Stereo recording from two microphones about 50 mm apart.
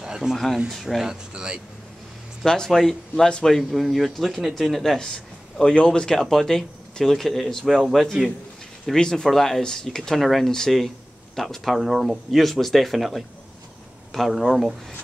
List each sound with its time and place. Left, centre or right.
0.0 s a sound: centre
0.7 s speech: centre
1.0 s speech: centre
2.4 s speech: centre
8.9 s speech: centre